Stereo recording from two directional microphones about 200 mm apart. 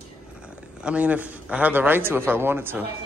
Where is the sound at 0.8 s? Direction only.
5° right (ahead or behind).